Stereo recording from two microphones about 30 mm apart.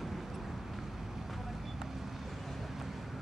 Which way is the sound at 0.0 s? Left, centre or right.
Centre.